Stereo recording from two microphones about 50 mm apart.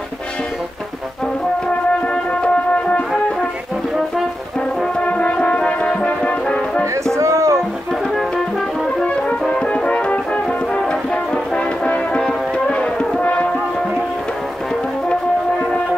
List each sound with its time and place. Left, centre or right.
2.0 s music: left
4.9 s brass instrument: left
7.2 s a sound: right
7.9 s music: centre
9.5 s music: centre
9.9 s brass instrument: left
12.3 s music: centre